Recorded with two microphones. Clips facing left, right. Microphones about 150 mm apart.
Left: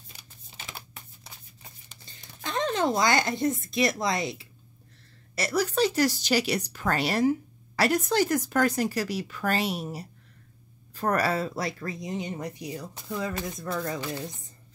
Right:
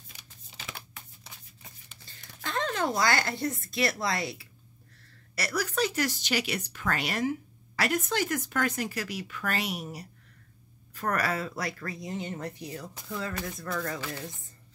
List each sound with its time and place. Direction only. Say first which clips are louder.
0.1 s typing: left 1 dB; 30° left (ahead or behind)
0.7 s shuffling cards: left 2 dB; 35° left (ahead or behind)
2.0 s speech: left 2 dB; 20° left (ahead or behind)